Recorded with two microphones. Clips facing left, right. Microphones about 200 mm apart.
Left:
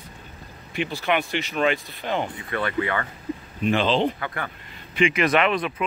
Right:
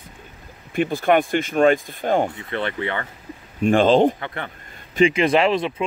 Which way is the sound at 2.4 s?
25° right (ahead or behind).